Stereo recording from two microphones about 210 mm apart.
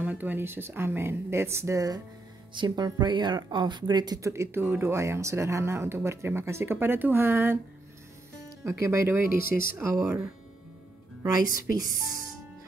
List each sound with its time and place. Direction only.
0.0 s speech: 10° right (ahead or behind)
8.6 s speech: 15° right (ahead or behind)
11.3 s speech: 40° left (ahead or behind)